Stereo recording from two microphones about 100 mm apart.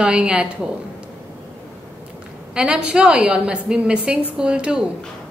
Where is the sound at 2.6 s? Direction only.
10° right (ahead or behind).